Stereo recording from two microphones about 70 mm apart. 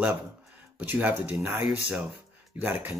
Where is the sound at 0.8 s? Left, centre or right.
Right.